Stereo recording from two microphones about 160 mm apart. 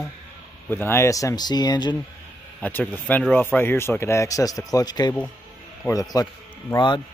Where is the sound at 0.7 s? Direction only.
15° left (ahead or behind).